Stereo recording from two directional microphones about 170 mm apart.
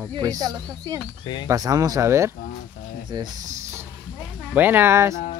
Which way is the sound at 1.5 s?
20° right (ahead or behind).